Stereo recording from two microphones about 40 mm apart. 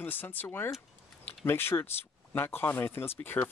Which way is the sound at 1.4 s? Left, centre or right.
Left.